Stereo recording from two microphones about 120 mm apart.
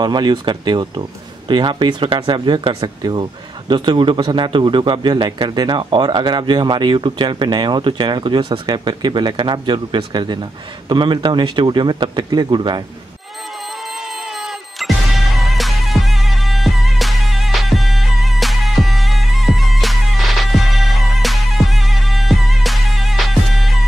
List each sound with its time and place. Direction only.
0.0 s speech: 35° right (ahead or behind)
13.9 s music: centre (ahead or behind)